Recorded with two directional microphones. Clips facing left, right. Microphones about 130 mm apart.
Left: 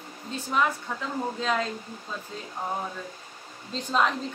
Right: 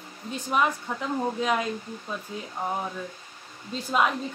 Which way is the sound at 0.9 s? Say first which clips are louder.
Right 3 dB; 15° right (ahead or behind).